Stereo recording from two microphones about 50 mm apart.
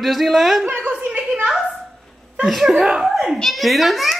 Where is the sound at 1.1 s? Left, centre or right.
Right.